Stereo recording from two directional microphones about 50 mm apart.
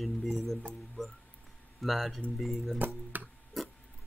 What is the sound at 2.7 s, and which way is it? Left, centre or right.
Speech, right.